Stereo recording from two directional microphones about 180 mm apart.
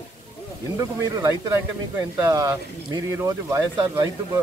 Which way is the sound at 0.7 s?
20° right (ahead or behind).